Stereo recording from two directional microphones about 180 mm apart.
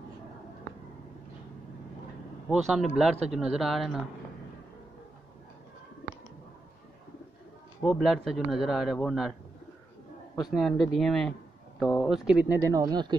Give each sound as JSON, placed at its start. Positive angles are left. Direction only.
{"t": 2.7, "sound": "speech", "side_deg": 0}
{"t": 7.8, "sound": "speech", "side_deg": 0}
{"t": 10.3, "sound": "speech", "side_deg": 0}